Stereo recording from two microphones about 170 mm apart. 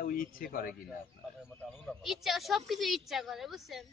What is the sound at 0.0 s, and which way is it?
Speech, 55° left (ahead or behind).